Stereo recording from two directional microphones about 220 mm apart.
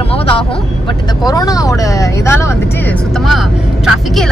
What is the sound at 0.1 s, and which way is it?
Vehicle, 25° left (ahead or behind).